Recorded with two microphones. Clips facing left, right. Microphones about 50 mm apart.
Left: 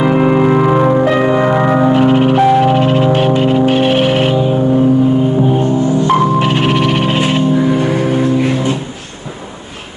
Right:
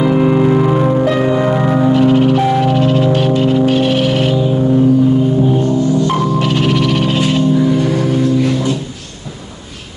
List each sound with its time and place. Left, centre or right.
0.0 s music: left